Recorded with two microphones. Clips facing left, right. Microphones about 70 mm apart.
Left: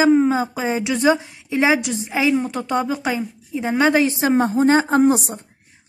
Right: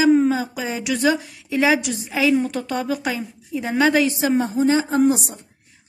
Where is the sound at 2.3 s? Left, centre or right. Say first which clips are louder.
Left 1 dB; centre.